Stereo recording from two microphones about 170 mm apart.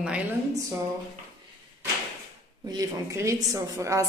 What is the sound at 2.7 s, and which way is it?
A woman's voice, 20° right (ahead or behind).